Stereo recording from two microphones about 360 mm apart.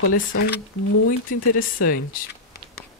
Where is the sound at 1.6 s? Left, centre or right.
Left.